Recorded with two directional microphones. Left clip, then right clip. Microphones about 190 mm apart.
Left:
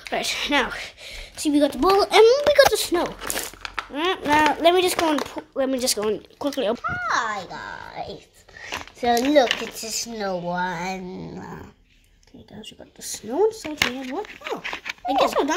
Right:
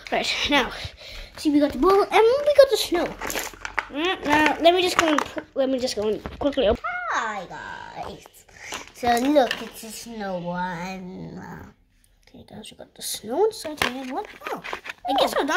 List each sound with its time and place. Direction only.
0.0 s speech: centre (ahead or behind)
8.6 s a sound: 10° left (ahead or behind)
9.6 s speech: 15° left (ahead or behind)
13.3 s speech: 10° right (ahead or behind)